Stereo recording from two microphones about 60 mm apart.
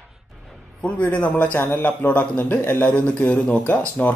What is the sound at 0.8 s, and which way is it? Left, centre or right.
Speech, left.